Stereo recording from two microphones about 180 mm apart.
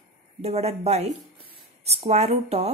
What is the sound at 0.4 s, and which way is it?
Speech, 35° right (ahead or behind).